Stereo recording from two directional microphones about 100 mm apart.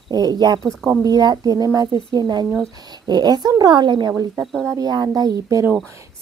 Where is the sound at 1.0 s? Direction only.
40° right (ahead or behind).